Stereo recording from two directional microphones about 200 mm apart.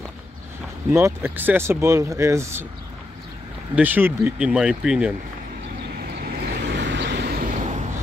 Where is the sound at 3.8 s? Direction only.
10° right (ahead or behind).